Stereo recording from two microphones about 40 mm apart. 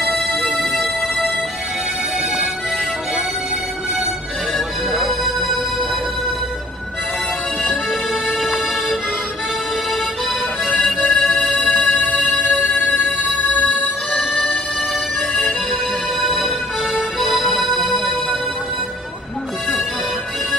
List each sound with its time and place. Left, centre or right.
0.0 s music: centre
4.9 s music: centre
7.6 s music: centre
10.7 s music: centre
16.2 s music: centre